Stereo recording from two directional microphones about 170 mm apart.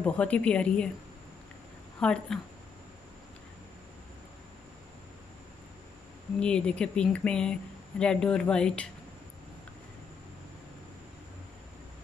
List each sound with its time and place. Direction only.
0.0 s a woman's voice: 5° left (ahead or behind)
2.0 s speech: 5° left (ahead or behind)
6.4 s speech: 5° left (ahead or behind)